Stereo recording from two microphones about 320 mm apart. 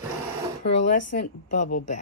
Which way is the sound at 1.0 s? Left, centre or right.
Left.